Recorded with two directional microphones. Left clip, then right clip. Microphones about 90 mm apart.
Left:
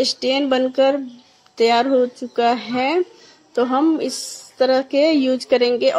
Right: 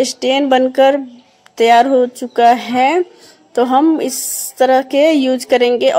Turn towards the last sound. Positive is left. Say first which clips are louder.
# right 4 dB
turn(degrees=-30)  # may be behind; listen again after turning